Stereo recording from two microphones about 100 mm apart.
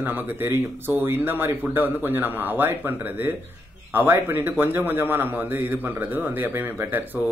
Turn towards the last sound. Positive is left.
turn(degrees=-20)  # may be behind; listen again after turning